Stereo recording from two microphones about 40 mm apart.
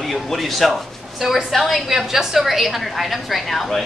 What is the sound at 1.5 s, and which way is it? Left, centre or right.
A woman's voice, centre.